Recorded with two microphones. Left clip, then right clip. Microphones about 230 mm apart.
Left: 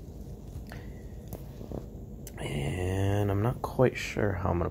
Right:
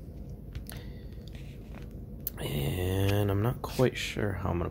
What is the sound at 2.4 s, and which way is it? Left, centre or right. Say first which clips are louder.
Speech: even; centre.